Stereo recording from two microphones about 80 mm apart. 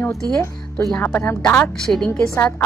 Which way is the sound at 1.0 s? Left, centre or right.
Left.